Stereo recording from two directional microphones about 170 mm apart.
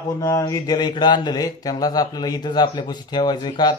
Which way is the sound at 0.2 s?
20° left (ahead or behind).